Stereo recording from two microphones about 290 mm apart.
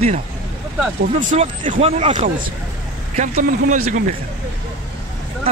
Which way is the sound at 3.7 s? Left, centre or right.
Right.